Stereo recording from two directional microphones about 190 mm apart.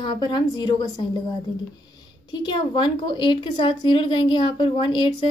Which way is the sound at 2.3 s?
25° left (ahead or behind).